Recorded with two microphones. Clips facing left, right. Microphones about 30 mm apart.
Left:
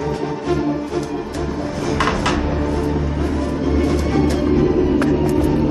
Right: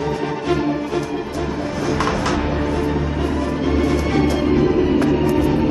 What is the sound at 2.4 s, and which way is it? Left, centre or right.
Music, centre.